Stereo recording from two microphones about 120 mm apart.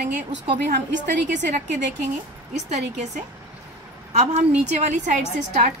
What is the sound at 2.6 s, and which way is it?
A woman's voice, 65° right (ahead or behind).